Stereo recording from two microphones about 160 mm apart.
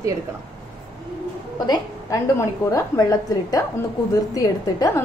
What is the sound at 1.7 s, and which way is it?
A woman's voice, 20° left (ahead or behind).